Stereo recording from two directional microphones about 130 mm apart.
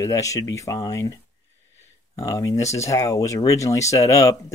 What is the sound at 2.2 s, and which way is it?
Speech, 25° left (ahead or behind).